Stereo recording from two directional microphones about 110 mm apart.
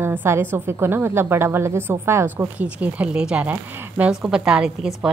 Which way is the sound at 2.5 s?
15° right (ahead or behind).